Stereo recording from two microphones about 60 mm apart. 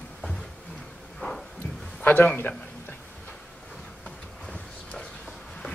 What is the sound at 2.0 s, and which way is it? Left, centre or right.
Speech, left.